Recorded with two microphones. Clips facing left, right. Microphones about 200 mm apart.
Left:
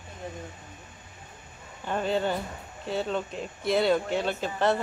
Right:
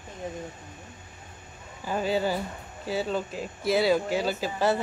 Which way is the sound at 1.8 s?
5° right (ahead or behind).